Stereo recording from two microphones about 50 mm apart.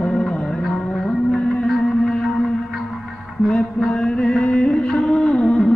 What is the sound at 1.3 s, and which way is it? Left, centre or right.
Music, left.